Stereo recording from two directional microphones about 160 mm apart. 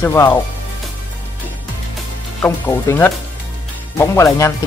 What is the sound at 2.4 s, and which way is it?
Speech, 15° left (ahead or behind).